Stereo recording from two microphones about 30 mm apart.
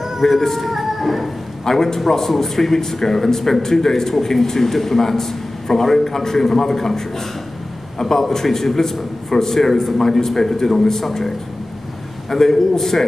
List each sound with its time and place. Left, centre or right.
0.2 s a man's voice: centre
0.6 s a sound: centre
1.6 s a man's voice: centre
12.3 s a man's voice: centre